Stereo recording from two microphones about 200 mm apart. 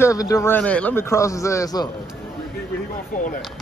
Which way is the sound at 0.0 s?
15° left (ahead or behind).